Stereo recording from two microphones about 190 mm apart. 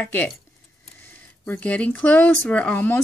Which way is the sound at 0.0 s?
10° left (ahead or behind).